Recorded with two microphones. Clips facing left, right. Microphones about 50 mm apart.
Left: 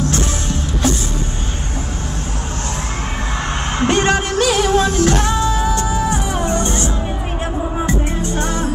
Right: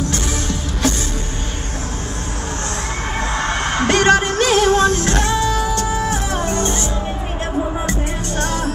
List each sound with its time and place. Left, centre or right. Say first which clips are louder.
3.3 s music: right 1 dB; right
5.5 s music: left 1 dB; left
5.9 s music: left 1 dB; right
6.5 s music: left 1 dB; left
7.8 s music: left 3 dB; centre